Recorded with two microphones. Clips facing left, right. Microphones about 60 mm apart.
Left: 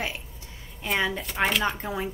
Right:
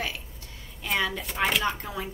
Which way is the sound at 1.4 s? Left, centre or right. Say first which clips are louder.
Left 1 dB; centre.